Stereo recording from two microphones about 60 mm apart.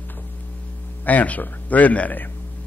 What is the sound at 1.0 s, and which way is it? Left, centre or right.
Speech, left.